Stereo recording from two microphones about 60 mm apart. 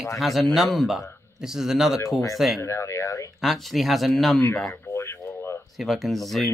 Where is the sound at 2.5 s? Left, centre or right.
Left.